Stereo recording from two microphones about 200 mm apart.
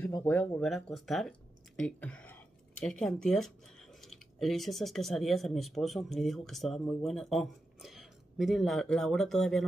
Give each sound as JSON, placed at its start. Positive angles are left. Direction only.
{"t": 0.0, "sound": "speech", "side_deg": 15}
{"t": 0.9, "sound": "speech", "side_deg": 0}